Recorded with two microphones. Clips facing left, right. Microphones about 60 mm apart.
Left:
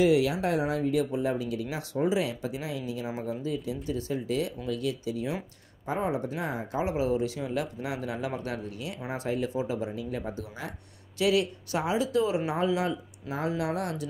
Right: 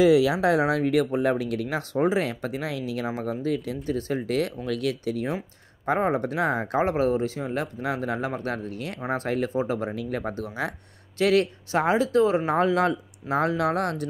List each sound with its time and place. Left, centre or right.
0.6 s speech: right
4.6 s speech: right
11.1 s speech: right